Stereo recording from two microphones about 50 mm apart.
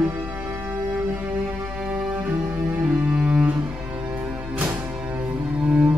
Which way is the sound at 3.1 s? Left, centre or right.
Centre.